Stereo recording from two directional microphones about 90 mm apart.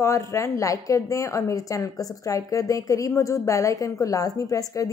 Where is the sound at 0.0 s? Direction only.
30° left (ahead or behind).